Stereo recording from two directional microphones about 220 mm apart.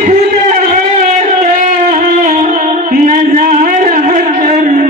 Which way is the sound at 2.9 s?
40° right (ahead or behind).